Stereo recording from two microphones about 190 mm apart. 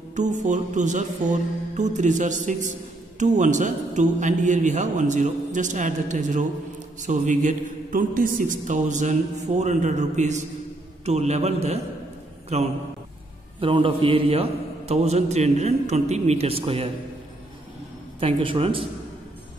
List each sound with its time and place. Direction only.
0.1 s a man's voice: 40° right (ahead or behind)
18.2 s speech: 30° right (ahead or behind)